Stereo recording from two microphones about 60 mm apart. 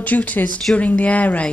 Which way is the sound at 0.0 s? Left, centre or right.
Left.